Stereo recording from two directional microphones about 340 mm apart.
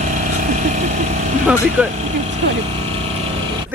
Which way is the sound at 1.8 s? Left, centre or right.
Centre.